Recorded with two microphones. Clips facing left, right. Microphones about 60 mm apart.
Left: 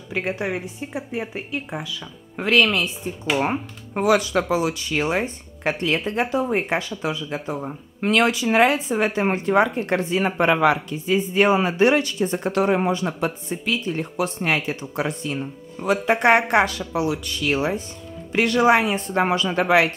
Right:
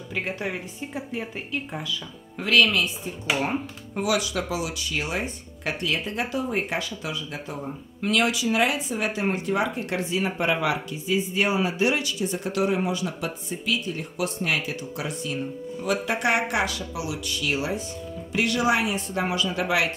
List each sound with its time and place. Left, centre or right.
0.1 s speech: centre
2.3 s speech: left
3.9 s speech: left
8.0 s speech: left